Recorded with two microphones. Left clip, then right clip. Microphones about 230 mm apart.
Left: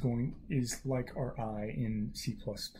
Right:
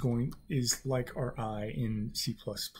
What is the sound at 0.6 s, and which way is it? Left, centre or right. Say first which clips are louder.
Speech: right 5 dB; centre.